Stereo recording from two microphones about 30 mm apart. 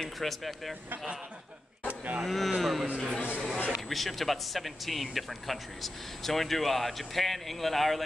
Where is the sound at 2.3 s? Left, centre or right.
Centre.